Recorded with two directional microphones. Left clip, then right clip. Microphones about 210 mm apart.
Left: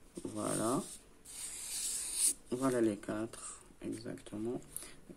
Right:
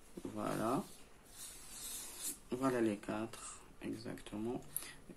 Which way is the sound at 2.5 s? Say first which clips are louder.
Left 2 dB; 20° left (ahead or behind).